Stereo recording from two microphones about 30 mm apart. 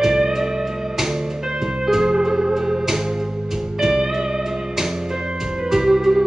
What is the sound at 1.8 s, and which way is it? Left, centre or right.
Music, centre.